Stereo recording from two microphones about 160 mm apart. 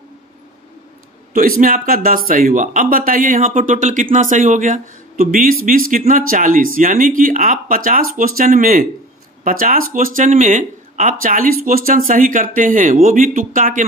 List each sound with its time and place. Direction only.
1.3 s speech: 60° right (ahead or behind)